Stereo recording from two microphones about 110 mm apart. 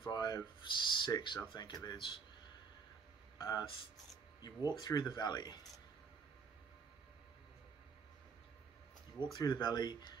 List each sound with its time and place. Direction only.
0.0 s speech: 40° left (ahead or behind)
3.3 s speech: 35° left (ahead or behind)
4.6 s speech: 40° left (ahead or behind)
9.2 s speech: 40° left (ahead or behind)